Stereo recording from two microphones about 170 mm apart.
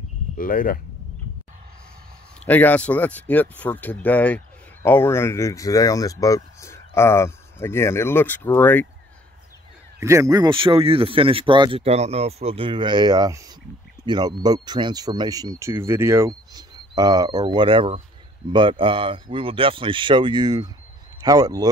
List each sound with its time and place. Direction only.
0.4 s speech: 55° left (ahead or behind)
2.4 s speech: 10° left (ahead or behind)
9.9 s speech: 15° right (ahead or behind)